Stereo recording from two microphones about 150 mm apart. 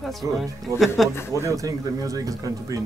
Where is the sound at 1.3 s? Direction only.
20° right (ahead or behind).